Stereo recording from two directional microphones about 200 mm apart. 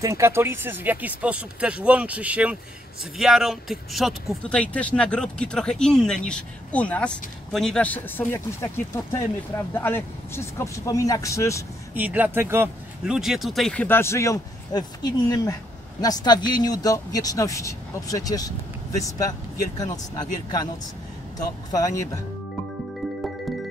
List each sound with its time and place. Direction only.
0.0 s speech: 15° right (ahead or behind); by 11.6 s 15° left (ahead or behind)
11.9 s speech: 10° right (ahead or behind); by 19.3 s 15° left (ahead or behind)
21.4 s speech: 20° left (ahead or behind)